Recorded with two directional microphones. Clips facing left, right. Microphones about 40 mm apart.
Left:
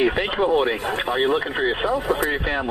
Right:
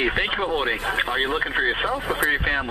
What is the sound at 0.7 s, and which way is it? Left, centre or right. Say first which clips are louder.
Speech: even; right.